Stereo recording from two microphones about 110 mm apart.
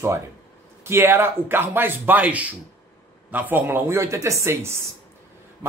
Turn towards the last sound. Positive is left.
turn(degrees=-25)  # may be behind; listen again after turning